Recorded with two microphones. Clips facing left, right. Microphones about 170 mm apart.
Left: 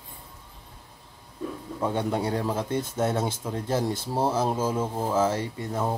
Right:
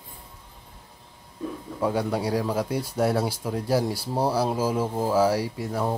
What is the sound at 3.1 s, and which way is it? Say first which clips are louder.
Speech: right 2 dB; 20° left (ahead or behind).